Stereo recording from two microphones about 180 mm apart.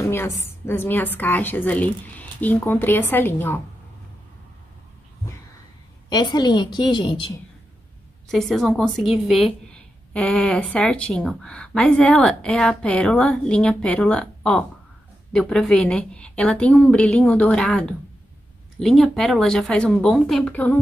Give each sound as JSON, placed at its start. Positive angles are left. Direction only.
{"t": 0.4, "sound": "a woman's voice", "side_deg": 10}
{"t": 6.0, "sound": "a woman's voice", "side_deg": 25}
{"t": 8.3, "sound": "a woman's voice", "side_deg": 0}